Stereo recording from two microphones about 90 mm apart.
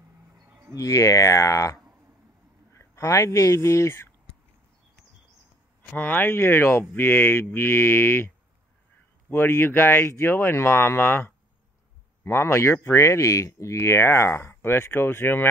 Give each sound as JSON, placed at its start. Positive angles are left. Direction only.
{"t": 0.5, "sound": "a sound", "side_deg": -30}
{"t": 0.7, "sound": "speech", "side_deg": 35}
{"t": 5.8, "sound": "speech", "side_deg": 20}
{"t": 9.3, "sound": "speech", "side_deg": 25}